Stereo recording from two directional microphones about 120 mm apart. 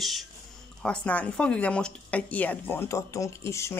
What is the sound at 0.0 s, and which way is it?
Speech, centre (ahead or behind).